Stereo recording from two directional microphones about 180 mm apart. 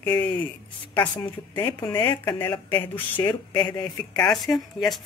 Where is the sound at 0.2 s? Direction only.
10° left (ahead or behind).